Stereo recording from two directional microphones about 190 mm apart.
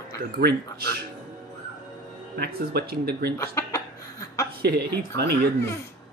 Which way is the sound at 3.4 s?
15° left (ahead or behind).